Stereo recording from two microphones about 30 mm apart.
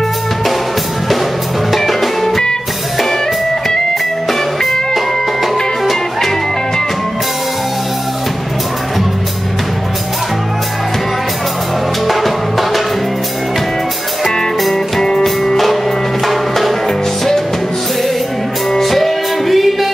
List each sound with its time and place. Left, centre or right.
1.8 s music: centre
4.9 s music: centre
12.1 s music: centre
14.2 s music: centre
15.0 s music: centre
15.5 s music: centre
18.8 s music: centre